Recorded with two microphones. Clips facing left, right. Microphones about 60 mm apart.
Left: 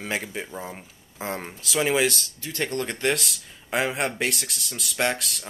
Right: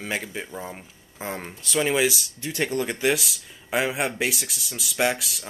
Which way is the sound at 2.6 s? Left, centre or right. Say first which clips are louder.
Right 2 dB; centre.